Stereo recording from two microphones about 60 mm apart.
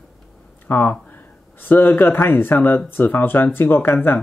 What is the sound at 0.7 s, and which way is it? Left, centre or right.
Speech, left.